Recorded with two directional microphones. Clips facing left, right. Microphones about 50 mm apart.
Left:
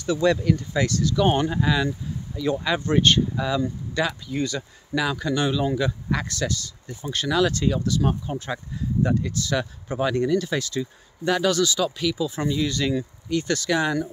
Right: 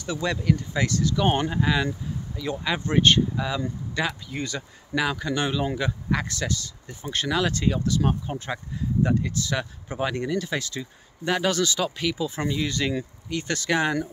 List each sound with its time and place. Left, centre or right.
0.0 s speech: centre; by 13.9 s right